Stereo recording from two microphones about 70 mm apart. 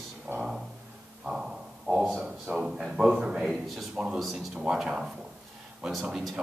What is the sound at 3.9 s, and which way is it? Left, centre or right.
A man's voice, centre.